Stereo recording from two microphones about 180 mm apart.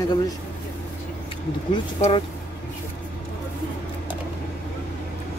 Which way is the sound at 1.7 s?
30° left (ahead or behind).